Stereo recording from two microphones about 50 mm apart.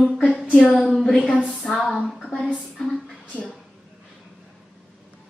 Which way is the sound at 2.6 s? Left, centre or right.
Centre.